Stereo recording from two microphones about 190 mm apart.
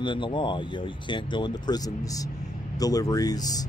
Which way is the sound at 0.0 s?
25° left (ahead or behind).